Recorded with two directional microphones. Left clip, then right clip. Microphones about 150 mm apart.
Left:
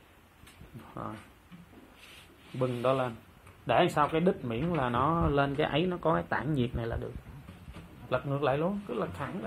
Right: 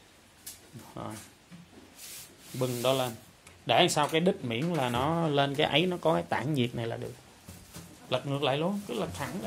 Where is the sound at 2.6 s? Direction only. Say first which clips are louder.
Even; 20° right (ahead or behind).